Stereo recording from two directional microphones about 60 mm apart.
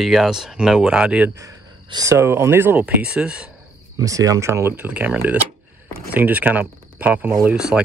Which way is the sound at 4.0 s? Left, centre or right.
Right.